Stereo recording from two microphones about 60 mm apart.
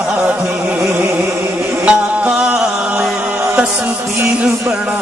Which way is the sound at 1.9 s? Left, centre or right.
Centre.